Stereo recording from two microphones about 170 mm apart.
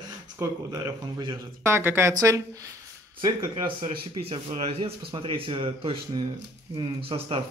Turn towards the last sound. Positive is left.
turn(degrees=-30)  # may be behind; listen again after turning